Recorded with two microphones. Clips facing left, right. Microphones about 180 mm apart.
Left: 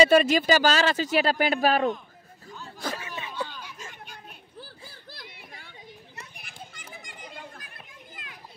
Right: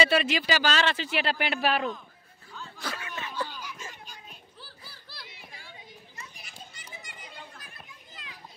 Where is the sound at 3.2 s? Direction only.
20° left (ahead or behind).